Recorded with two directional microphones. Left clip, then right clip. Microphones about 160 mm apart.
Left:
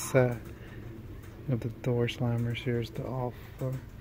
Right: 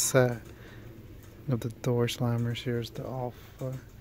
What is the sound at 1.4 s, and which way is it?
Speech, 30° right (ahead or behind).